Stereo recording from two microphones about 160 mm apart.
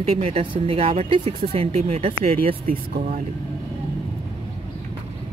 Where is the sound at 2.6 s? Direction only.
60° right (ahead or behind).